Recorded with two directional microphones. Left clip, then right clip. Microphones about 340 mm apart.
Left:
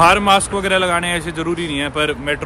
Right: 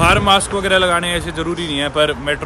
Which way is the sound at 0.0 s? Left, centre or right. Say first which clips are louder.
Left 1 dB; centre.